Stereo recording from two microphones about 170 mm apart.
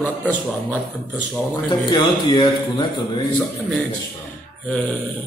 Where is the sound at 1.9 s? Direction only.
25° left (ahead or behind).